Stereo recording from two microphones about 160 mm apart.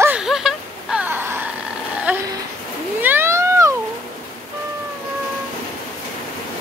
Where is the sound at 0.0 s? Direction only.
5° right (ahead or behind).